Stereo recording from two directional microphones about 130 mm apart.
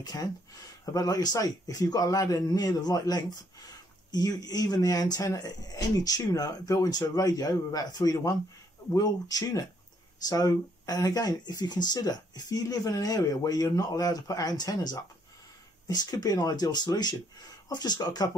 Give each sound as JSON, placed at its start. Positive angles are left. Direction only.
{"t": 0.0, "sound": "a man's voice", "side_deg": 30}